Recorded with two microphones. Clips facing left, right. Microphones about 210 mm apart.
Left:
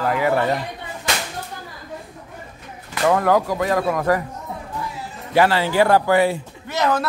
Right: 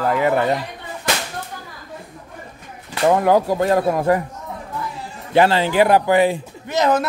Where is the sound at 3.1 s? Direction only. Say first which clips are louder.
Right 2 dB; 15° right (ahead or behind).